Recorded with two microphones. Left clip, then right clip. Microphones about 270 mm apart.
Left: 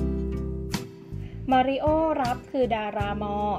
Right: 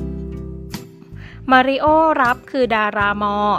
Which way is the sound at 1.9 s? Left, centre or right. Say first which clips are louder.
Right 10 dB; centre.